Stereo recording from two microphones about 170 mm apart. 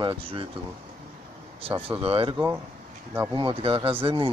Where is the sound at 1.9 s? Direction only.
35° right (ahead or behind).